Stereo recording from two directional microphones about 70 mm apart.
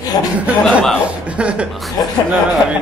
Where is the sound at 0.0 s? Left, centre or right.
Left.